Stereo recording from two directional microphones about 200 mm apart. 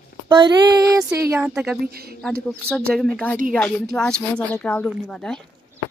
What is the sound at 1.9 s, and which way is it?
Speech, 50° right (ahead or behind).